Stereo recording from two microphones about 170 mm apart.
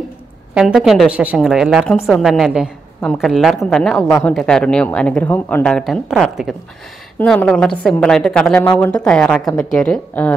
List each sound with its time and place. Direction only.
0.6 s a woman's voice: 5° right (ahead or behind)